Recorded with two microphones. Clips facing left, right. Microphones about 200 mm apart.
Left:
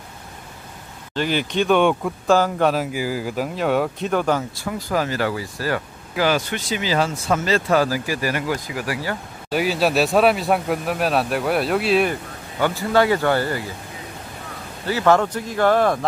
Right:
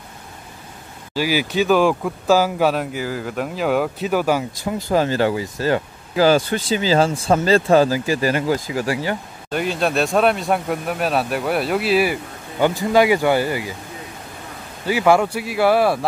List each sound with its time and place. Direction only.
1.1 s speech: 5° right (ahead or behind)
4.6 s speech: 25° right (ahead or behind)
6.1 s speech: 35° right (ahead or behind)
9.5 s speech: 5° left (ahead or behind)
12.5 s speech: 15° right (ahead or behind)
14.9 s speech: 10° right (ahead or behind)